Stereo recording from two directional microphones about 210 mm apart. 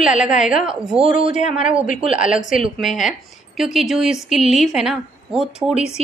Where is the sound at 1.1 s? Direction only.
35° left (ahead or behind).